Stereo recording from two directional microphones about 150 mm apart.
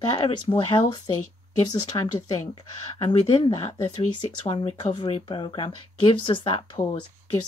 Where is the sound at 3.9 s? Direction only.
35° left (ahead or behind).